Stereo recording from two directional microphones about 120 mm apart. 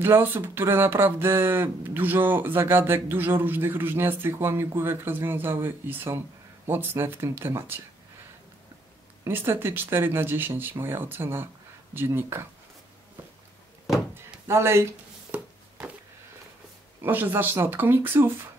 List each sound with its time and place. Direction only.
0.0 s speech: 15° right (ahead or behind)
9.2 s speech: 20° right (ahead or behind)
14.5 s speech: 20° right (ahead or behind)
15.3 s a sound: 15° right (ahead or behind)
17.0 s speech: 15° right (ahead or behind)